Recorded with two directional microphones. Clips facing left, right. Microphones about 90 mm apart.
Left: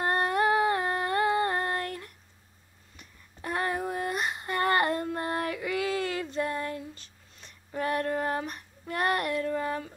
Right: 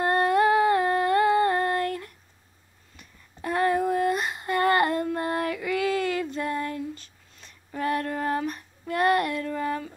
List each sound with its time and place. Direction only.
0.0 s humming: 25° left (ahead or behind)
3.4 s female singing: 20° left (ahead or behind)
4.5 s a sound: 30° left (ahead or behind)
8.8 s child singing: 30° left (ahead or behind)